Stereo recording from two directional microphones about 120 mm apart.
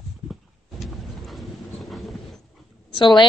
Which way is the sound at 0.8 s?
Centre (ahead or behind).